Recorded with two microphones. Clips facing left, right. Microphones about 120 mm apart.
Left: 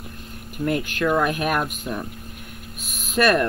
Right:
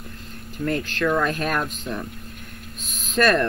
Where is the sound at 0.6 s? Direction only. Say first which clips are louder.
Left 1 dB; 10° left (ahead or behind).